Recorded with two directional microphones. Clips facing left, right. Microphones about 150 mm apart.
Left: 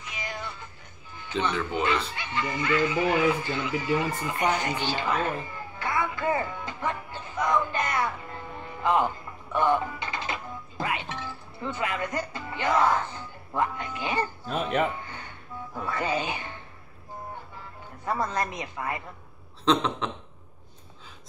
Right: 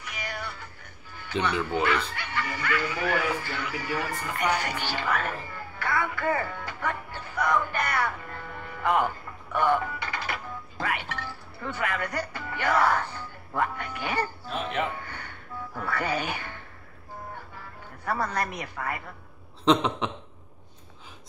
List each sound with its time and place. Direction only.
0.0 s music: 20° left (ahead or behind)
1.7 s chuckle: 20° left (ahead or behind)
13.6 s a sound: 20° left (ahead or behind)
14.5 s music: 40° left (ahead or behind)
15.0 s music: 20° left (ahead or behind)
18.0 s a woman's voice: 20° left (ahead or behind)
19.7 s a sound: 5° right (ahead or behind)